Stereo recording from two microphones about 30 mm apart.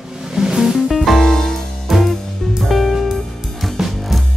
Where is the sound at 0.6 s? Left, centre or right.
Centre.